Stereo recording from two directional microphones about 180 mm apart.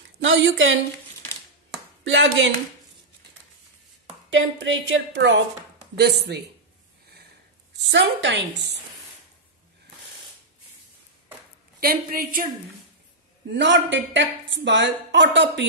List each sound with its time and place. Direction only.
0.0 s a woman's voice: 90° right
2.0 s a woman's voice: 90° right
4.3 s a woman's voice: 90° right
5.9 s speech: 65° right (ahead or behind)
7.9 s a woman's voice: 80° right
11.8 s a woman's voice: 55° right (ahead or behind)
13.5 s a woman's voice: 90° right